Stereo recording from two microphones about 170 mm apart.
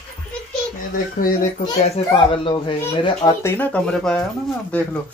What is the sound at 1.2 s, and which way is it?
Speech, 55° left (ahead or behind).